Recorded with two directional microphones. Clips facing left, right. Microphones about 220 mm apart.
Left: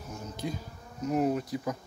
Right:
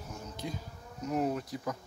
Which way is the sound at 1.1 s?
10° left (ahead or behind).